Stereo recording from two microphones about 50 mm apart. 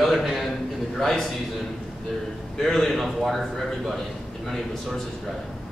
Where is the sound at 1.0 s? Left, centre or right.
Centre.